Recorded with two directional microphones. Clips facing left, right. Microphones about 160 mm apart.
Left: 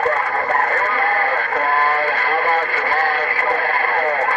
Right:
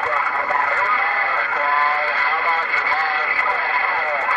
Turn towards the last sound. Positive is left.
turn(degrees=50)  # may be behind; listen again after turning